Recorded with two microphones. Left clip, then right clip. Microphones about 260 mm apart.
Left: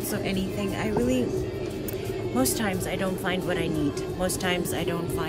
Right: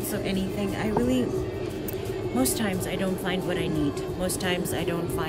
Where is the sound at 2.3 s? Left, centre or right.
Centre.